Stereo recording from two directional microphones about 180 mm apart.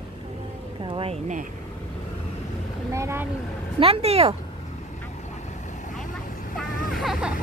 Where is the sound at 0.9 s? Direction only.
35° right (ahead or behind).